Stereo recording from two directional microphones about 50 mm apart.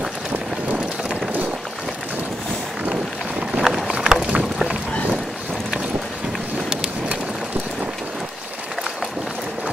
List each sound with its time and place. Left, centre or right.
0.3 s vehicle: right
2.9 s boat: centre